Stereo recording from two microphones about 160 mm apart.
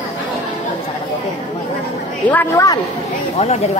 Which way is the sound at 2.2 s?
15° left (ahead or behind).